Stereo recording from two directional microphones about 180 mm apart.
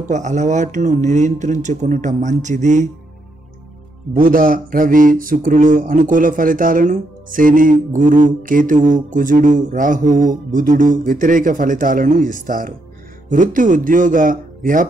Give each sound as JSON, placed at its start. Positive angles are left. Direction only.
{"t": 0.1, "sound": "speech", "side_deg": -40}
{"t": 4.2, "sound": "mantra", "side_deg": -50}